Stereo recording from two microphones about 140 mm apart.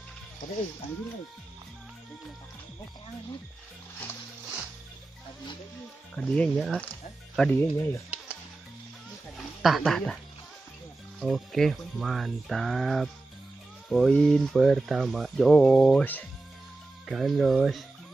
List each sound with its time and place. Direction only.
6.1 s speech: 10° left (ahead or behind)
7.5 s speech: 15° left (ahead or behind)
9.6 s speech: centre (ahead or behind)
11.1 s speech: centre (ahead or behind)
17.0 s speech: centre (ahead or behind)